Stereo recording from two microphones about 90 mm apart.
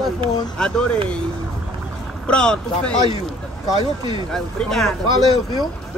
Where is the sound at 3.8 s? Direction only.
65° right (ahead or behind).